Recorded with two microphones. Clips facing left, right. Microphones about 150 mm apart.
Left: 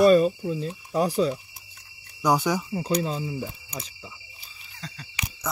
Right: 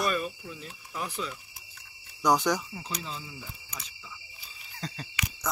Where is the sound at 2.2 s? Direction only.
5° left (ahead or behind).